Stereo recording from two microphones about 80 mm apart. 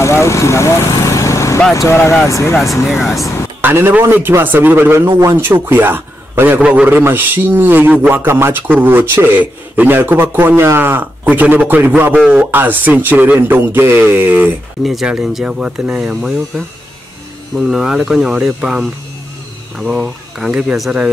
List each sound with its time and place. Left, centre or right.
0.0 s vehicle: left
2.2 s speech: left
2.5 s speech: centre
3.6 s a man's voice: right
14.8 s speech: centre
16.2 s speech: centre